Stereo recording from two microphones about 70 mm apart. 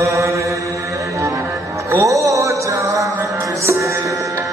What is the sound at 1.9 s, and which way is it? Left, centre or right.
Music, right.